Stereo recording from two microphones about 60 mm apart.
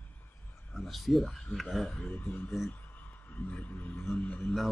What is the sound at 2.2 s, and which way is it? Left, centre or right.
Speech, left.